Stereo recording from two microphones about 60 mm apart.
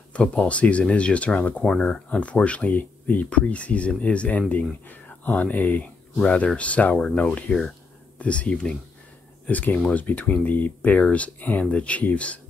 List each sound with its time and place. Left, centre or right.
0.1 s speech: centre
1.6 s speech: centre
9.5 s speech: left